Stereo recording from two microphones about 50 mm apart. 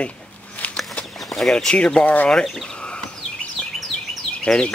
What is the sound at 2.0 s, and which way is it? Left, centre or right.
Speech, left.